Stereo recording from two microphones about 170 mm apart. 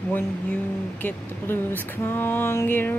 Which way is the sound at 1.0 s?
10° left (ahead or behind).